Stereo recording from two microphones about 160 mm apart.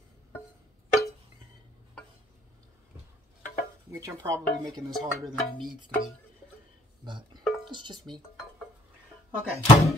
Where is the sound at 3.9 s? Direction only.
20° right (ahead or behind).